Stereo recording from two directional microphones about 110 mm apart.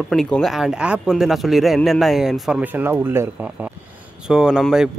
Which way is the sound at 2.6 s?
20° right (ahead or behind).